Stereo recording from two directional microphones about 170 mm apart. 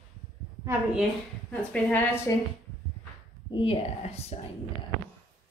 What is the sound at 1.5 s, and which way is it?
Speech, 10° left (ahead or behind).